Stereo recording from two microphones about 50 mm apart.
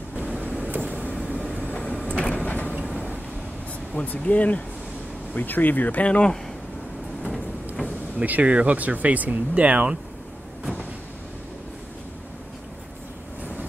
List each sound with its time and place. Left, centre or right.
0.1 s vehicle: right
0.8 s vehicle: left
1.3 s train: centre
2.0 s vehicle: left
3.9 s speech: left
8.2 s speech: right